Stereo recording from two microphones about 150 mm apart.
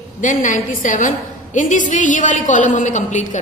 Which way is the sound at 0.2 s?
60° left (ahead or behind).